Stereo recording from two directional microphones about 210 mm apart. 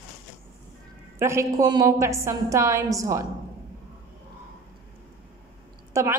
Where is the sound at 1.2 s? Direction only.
15° right (ahead or behind).